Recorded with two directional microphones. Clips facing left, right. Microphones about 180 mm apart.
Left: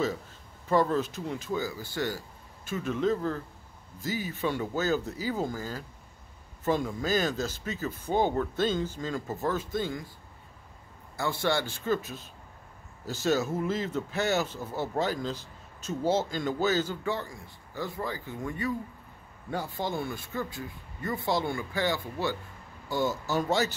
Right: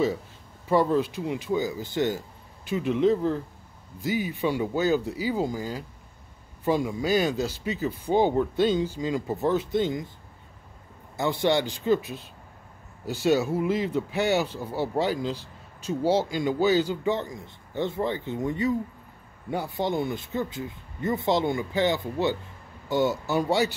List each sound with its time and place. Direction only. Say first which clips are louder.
0.7 s speech: right 3 dB; 15° right (ahead or behind)
11.1 s speech: right 5 dB; 20° right (ahead or behind)